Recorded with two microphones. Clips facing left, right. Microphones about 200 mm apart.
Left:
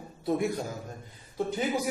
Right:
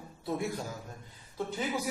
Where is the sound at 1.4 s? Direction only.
15° left (ahead or behind).